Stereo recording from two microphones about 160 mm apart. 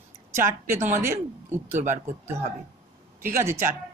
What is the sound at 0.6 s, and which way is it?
Speech, 15° right (ahead or behind).